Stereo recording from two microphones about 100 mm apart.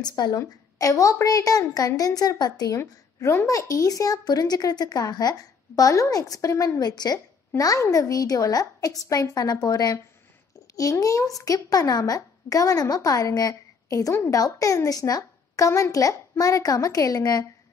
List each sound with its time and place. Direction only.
0.0 s a woman's voice: 40° left (ahead or behind)
2.8 s a woman's voice: 25° left (ahead or behind)